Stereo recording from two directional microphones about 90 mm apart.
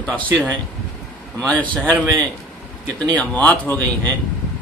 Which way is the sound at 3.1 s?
15° left (ahead or behind).